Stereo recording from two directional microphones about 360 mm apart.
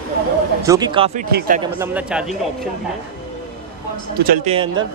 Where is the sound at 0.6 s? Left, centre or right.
Centre.